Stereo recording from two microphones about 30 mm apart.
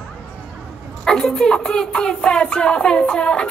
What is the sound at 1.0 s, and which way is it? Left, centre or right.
Music, centre.